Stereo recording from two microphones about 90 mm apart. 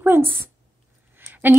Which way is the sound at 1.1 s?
20° right (ahead or behind).